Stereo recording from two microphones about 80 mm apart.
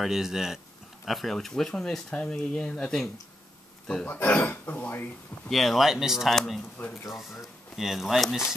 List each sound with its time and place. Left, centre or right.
0.0 s speech: centre
4.1 s speech: left
5.5 s speech: centre
7.7 s speech: centre